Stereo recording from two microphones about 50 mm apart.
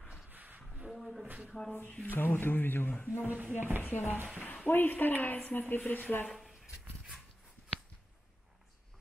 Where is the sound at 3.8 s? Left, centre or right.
Left.